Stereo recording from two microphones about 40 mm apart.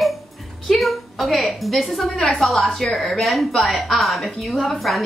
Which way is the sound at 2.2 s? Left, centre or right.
Centre.